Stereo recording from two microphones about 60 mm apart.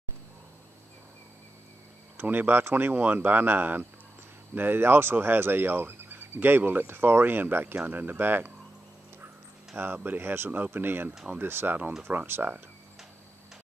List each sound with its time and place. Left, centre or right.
2.1 s speech: right
9.9 s speech: right